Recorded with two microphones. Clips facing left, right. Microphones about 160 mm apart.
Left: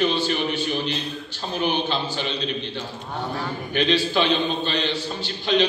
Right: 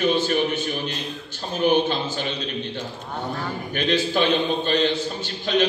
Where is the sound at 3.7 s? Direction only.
50° right (ahead or behind).